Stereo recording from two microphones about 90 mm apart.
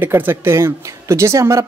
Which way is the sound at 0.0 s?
25° right (ahead or behind).